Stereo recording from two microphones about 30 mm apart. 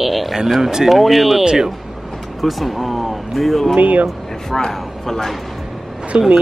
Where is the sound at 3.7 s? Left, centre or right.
Right.